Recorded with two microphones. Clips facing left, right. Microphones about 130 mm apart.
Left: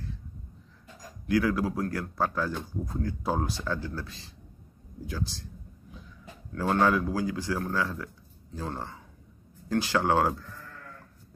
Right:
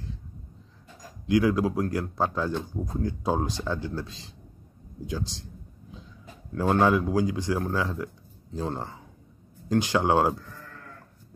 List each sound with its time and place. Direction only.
1.2 s speech: 20° right (ahead or behind)
5.0 s a sound: 20° right (ahead or behind)
6.7 s speech: 20° right (ahead or behind)